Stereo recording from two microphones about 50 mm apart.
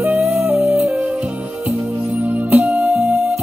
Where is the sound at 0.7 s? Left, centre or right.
Right.